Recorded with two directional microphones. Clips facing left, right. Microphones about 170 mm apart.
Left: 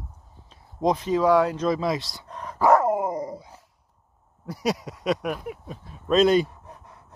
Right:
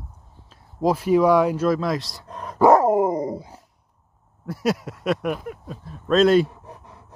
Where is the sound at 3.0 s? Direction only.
20° right (ahead or behind).